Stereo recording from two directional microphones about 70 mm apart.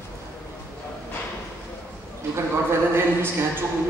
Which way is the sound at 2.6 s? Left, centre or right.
Right.